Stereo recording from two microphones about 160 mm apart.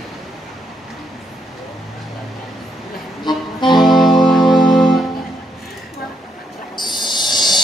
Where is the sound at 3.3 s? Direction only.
30° left (ahead or behind).